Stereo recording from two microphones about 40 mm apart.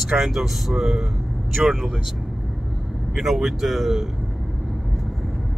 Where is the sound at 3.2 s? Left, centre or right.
Centre.